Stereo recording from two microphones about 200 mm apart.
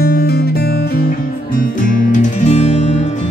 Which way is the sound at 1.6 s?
40° left (ahead or behind).